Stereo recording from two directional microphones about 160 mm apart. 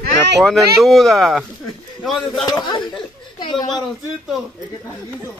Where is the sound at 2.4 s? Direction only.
25° left (ahead or behind).